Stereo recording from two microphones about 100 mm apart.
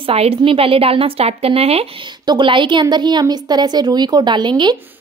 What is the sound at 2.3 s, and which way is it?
Speech, 55° right (ahead or behind).